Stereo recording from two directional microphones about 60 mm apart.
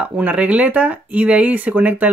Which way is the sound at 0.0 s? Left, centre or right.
Right.